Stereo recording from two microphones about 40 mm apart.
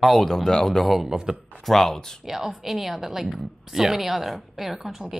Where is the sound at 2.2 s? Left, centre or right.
Centre.